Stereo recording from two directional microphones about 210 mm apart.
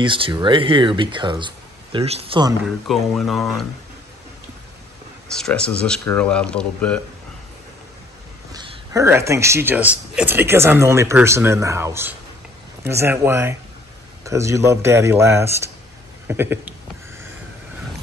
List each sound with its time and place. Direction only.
0.0 s speech: 25° right (ahead or behind)
2.6 s speech: centre (ahead or behind)
5.3 s speech: 5° left (ahead or behind)
8.5 s speech: 15° right (ahead or behind)